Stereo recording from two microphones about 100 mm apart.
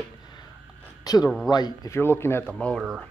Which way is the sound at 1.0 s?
40° left (ahead or behind).